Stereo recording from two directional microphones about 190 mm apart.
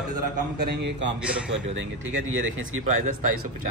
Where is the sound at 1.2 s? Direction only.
5° right (ahead or behind).